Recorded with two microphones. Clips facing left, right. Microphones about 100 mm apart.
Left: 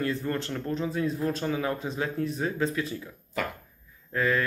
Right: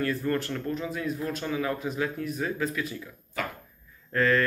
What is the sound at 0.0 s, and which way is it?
Speech, 20° left (ahead or behind).